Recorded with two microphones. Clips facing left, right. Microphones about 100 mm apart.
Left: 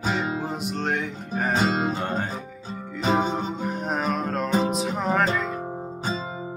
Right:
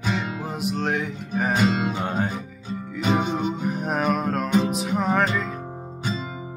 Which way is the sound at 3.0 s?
35° left (ahead or behind).